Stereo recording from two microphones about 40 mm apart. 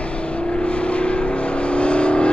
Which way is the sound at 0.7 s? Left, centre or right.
Left.